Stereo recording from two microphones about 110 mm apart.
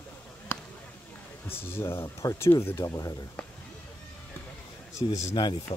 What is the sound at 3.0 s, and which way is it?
Speech, 30° left (ahead or behind).